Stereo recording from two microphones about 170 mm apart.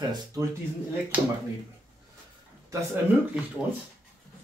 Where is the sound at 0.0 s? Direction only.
25° right (ahead or behind).